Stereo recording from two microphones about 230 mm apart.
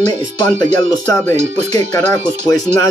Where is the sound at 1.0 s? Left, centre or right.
Centre.